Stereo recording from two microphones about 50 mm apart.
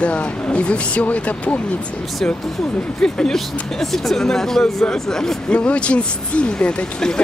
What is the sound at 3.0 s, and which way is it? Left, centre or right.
Speech, centre.